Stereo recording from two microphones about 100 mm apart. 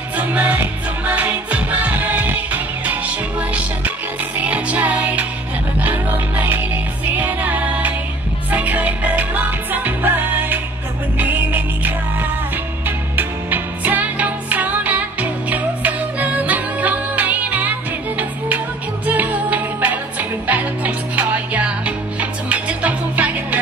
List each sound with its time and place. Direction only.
0.2 s music: 15° right (ahead or behind)